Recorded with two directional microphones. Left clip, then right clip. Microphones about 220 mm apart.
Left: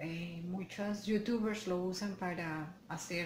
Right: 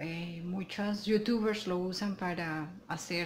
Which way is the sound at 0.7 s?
40° right (ahead or behind).